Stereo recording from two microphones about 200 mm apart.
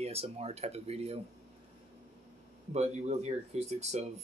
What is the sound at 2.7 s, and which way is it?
Speech, 35° right (ahead or behind).